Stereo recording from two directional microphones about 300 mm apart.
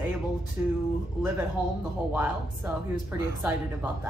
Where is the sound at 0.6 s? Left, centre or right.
Centre.